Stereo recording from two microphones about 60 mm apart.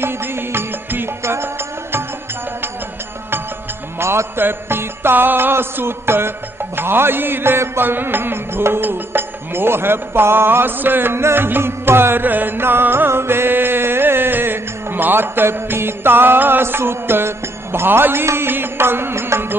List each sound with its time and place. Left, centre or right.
0.0 s music: right
4.0 s music: right